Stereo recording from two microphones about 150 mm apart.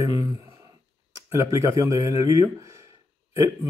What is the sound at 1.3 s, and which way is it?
Speech, 20° right (ahead or behind).